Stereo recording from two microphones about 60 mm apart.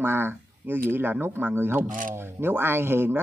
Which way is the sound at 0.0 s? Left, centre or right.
Right.